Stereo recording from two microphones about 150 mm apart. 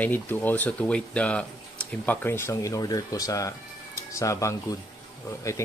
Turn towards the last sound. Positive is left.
turn(degrees=20)  # may be behind; listen again after turning